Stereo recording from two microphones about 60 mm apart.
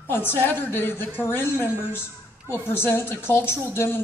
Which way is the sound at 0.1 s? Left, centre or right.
Left.